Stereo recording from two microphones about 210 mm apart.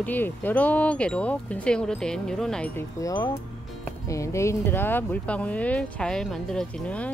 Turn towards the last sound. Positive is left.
turn(degrees=5)  # may be behind; listen again after turning